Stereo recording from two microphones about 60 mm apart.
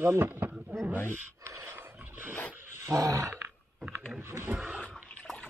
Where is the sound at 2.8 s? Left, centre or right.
Right.